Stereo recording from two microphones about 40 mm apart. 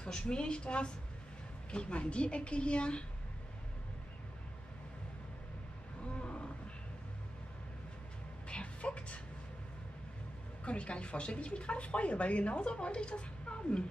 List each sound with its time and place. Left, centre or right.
0.0 s speech: left
6.0 s wild animals: left
8.5 s music: left
10.6 s speech: left